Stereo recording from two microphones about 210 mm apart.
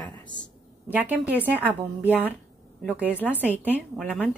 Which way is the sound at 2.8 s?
5° right (ahead or behind).